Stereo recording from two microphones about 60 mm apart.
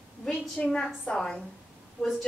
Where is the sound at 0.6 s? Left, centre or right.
Centre.